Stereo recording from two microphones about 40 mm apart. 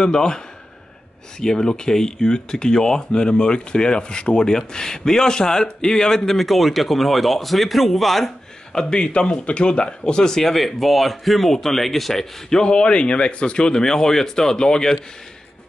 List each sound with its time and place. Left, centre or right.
0.0 s speech: centre
1.4 s a man's voice: centre
8.7 s speech: left
12.7 s speech: left